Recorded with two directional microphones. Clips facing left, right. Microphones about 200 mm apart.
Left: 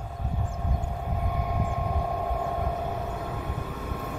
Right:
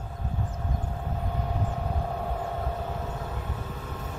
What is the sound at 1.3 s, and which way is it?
Vehicle, 15° left (ahead or behind).